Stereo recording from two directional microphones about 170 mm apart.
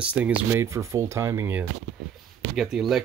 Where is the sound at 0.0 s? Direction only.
10° right (ahead or behind).